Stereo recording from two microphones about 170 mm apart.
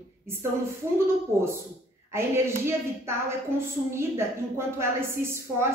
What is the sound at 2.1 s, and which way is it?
A woman's voice, 15° right (ahead or behind).